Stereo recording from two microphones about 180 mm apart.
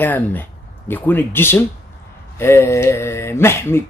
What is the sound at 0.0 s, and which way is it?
Speech, 10° left (ahead or behind).